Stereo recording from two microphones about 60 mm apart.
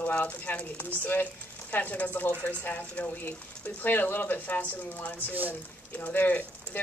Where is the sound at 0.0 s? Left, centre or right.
Left.